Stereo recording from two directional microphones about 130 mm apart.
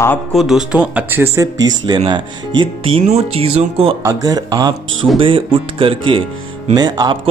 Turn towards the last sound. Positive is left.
turn(degrees=-30)  # may be behind; listen again after turning